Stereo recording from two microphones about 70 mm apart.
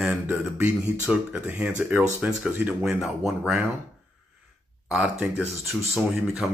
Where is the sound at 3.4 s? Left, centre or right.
Centre.